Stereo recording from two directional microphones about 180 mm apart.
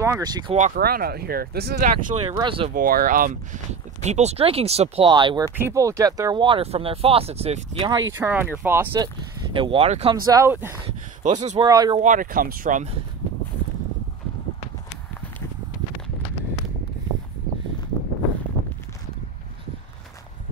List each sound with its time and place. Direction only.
0.0 s speech: 20° right (ahead or behind)
0.7 s speech: 55° right (ahead or behind); by 2.3 s 40° right (ahead or behind)
2.3 s speech: 30° right (ahead or behind)
2.7 s speech: 55° right (ahead or behind)
4.0 s speech: 40° right (ahead or behind)
8.2 s speech: 10° right (ahead or behind)
9.0 s speech: 30° right (ahead or behind)
10.2 s speech: 15° right (ahead or behind)
11.2 s speech: 40° right (ahead or behind)
11.6 s speech: 25° right (ahead or behind)
12.0 s speech: 45° right (ahead or behind)